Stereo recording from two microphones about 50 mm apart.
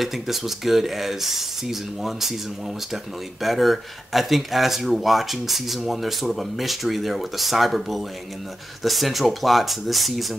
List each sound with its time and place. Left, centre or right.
0.0 s speech: centre
3.4 s speech: centre